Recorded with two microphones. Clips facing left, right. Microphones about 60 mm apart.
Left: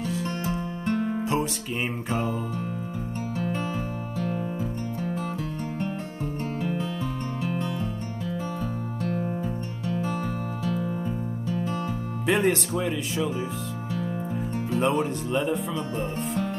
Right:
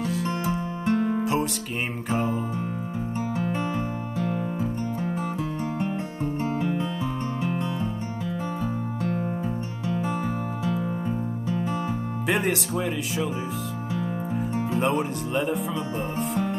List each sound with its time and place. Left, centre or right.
0.0 s music: centre
0.5 s music: centre
1.2 s music: centre
3.3 s music: centre
6.6 s music: centre
10.6 s music: right
12.3 s speech: centre
14.5 s speech: centre
16.2 s music: centre